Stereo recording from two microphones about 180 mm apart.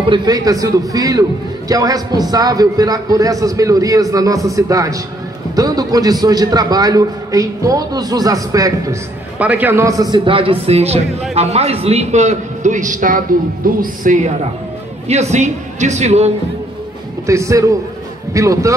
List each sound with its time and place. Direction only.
0.0 s a man's voice: 25° right (ahead or behind)
17.3 s speech: 15° right (ahead or behind)